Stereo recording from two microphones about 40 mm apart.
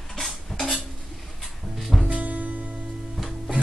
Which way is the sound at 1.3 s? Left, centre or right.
Centre.